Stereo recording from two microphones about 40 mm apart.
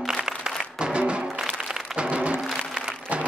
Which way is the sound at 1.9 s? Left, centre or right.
Right.